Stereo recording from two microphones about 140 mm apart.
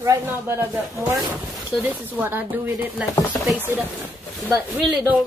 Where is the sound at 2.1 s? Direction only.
15° right (ahead or behind).